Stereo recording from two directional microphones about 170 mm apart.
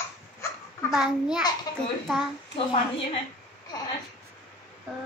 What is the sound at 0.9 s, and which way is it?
Speech, 5° right (ahead or behind).